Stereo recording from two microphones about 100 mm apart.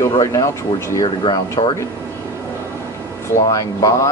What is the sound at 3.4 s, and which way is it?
Speech, 35° left (ahead or behind).